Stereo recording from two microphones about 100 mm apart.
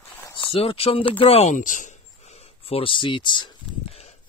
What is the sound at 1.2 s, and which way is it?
Speech, 90° left.